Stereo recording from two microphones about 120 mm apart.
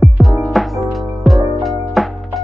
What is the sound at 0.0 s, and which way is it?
Music, centre (ahead or behind).